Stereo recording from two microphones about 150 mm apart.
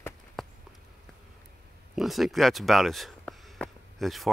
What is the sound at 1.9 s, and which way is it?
Speech, centre (ahead or behind).